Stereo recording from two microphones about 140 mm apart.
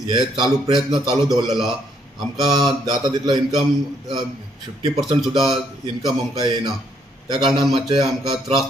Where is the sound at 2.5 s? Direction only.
30° right (ahead or behind).